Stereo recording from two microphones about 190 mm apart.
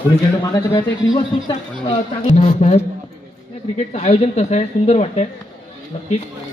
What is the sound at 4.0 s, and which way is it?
A woman's voice, 35° left (ahead or behind).